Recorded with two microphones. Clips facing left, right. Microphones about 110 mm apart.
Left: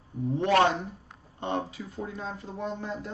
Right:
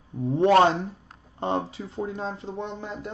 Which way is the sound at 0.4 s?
30° right (ahead or behind).